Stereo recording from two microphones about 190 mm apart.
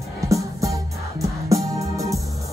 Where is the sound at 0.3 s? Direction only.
15° right (ahead or behind).